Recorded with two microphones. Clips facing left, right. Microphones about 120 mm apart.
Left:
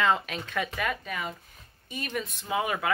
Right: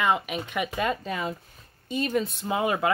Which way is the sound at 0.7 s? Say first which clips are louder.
Right 4 dB; 25° right (ahead or behind).